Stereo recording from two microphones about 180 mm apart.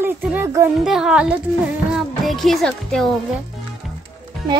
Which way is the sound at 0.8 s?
Centre (ahead or behind).